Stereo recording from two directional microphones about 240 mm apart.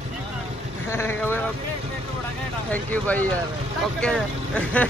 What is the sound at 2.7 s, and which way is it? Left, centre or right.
Speech, centre.